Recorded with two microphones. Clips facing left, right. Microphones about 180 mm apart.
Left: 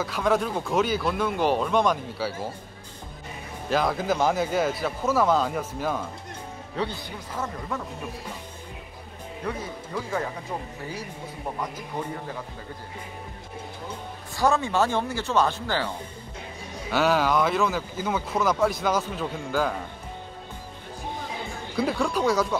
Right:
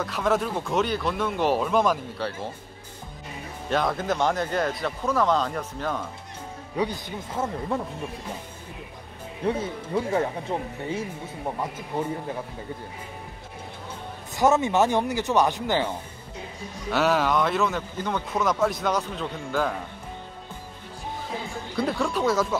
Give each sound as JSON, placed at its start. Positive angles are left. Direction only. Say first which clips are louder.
{"t": 0.0, "sound": "speech", "louder": "even", "side_deg": 0}
{"t": 3.6, "sound": "speech", "louder": "left 1 dB", "side_deg": 0}
{"t": 6.8, "sound": "speech", "louder": "right 3 dB", "side_deg": -15}
{"t": 7.4, "sound": "speech", "louder": "right 4 dB", "side_deg": -25}
{"t": 9.4, "sound": "speech", "louder": "right 6 dB", "side_deg": -30}
{"t": 14.3, "sound": "speech", "louder": "right 3 dB", "side_deg": -20}
{"t": 16.9, "sound": "speech", "louder": "even", "side_deg": 0}
{"t": 21.7, "sound": "speech", "louder": "left 1 dB", "side_deg": 0}